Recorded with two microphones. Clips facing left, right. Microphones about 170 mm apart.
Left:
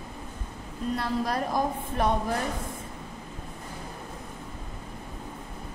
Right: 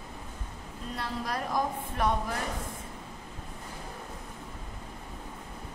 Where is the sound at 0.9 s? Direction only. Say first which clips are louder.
Left 5 dB; 30° left (ahead or behind).